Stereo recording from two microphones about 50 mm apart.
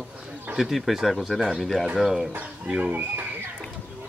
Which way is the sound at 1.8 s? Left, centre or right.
Centre.